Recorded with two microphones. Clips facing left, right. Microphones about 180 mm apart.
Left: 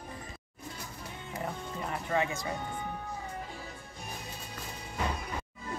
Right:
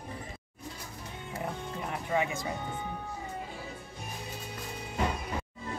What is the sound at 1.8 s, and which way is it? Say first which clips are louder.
Music: even; 10° right (ahead or behind).